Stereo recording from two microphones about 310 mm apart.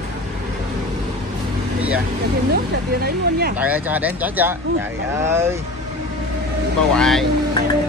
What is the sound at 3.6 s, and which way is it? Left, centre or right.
Speech, centre.